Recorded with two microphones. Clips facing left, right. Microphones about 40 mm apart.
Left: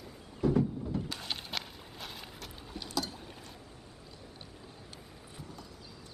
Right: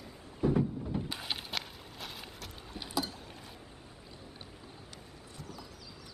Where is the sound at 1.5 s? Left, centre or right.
Centre.